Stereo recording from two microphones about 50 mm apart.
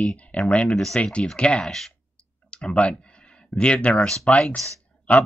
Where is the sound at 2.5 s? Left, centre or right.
Left.